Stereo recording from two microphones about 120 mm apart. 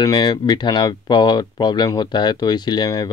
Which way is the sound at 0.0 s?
35° left (ahead or behind).